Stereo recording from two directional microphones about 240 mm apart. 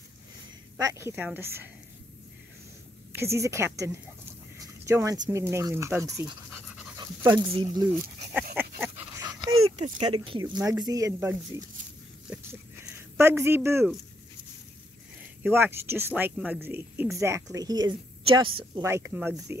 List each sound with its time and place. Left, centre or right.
0.7 s speech: centre
3.2 s speech: centre
8.5 s dog: centre
9.7 s speech: centre
13.2 s speech: centre
15.4 s speech: centre
18.9 s speech: centre